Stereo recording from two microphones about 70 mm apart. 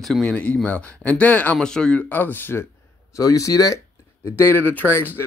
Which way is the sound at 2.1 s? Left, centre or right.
Left.